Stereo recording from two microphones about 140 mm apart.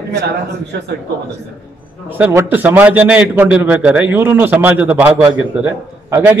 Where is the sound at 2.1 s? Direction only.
10° right (ahead or behind).